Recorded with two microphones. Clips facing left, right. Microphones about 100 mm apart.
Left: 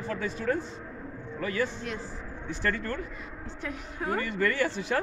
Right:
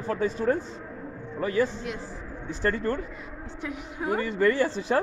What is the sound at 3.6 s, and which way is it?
Speech, 10° right (ahead or behind).